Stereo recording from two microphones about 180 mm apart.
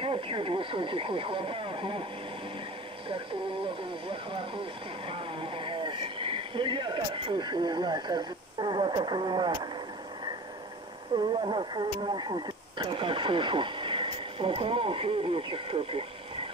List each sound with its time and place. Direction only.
0.0 s speech: 30° right (ahead or behind)
3.1 s speech: 30° right (ahead or behind)
11.1 s speech: 25° right (ahead or behind)